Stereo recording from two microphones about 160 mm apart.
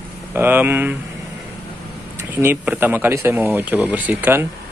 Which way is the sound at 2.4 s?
10° right (ahead or behind).